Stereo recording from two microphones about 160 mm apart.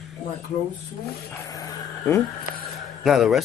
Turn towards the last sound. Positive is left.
turn(degrees=0)  # may be behind; listen again after turning